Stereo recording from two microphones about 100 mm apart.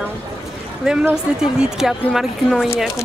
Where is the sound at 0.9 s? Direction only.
10° right (ahead or behind).